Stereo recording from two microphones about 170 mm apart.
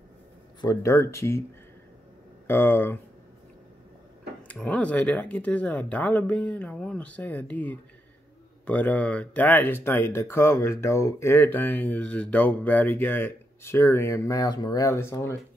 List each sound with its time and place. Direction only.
0.6 s speech: 20° left (ahead or behind)
2.4 s speech: 15° left (ahead or behind)
4.4 s speech: 10° left (ahead or behind)